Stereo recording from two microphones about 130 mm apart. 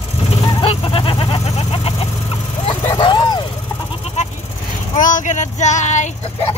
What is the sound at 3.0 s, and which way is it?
Vehicle, 35° left (ahead or behind).